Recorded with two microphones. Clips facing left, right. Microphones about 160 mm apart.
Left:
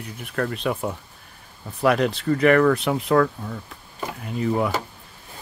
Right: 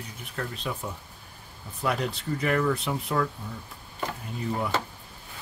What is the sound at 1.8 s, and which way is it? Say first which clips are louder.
Speech: left 9 dB; 75° left (ahead or behind).